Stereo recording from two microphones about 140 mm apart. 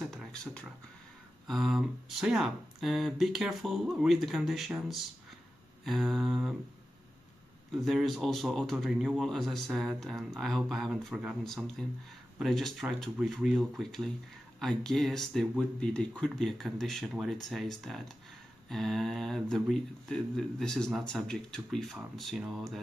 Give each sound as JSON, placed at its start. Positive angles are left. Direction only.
{"t": 0.1, "sound": "a sound", "side_deg": 5}
{"t": 1.5, "sound": "speech", "side_deg": 0}
{"t": 7.8, "sound": "speech", "side_deg": 0}